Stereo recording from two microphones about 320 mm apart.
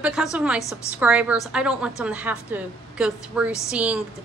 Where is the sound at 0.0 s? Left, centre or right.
Centre.